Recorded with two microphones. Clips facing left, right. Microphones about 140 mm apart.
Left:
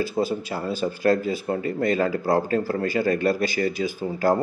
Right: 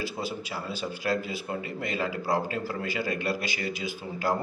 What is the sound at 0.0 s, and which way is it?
A man's voice, 45° left (ahead or behind).